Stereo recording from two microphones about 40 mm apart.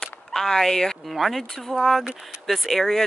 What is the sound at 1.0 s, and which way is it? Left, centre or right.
Speech, centre.